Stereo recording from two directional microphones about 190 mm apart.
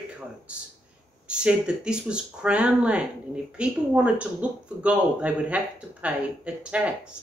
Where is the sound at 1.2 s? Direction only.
5° right (ahead or behind).